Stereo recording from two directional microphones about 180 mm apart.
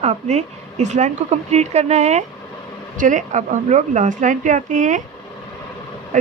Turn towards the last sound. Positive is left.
turn(degrees=-45)  # may be behind; listen again after turning